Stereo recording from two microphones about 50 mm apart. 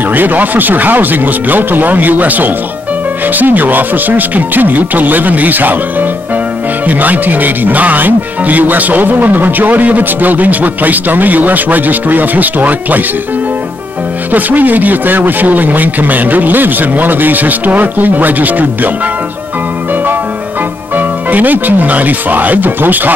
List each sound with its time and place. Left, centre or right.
0.1 s speech: right
14.3 s speech: right
20.9 s speech: right